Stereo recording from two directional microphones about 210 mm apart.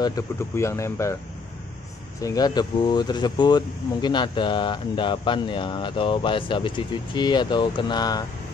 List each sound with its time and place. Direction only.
0.0 s speech: 15° left (ahead or behind)
2.2 s speech: 20° left (ahead or behind)